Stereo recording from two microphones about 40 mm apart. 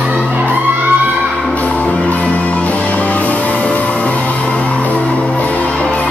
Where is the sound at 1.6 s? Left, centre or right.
Left.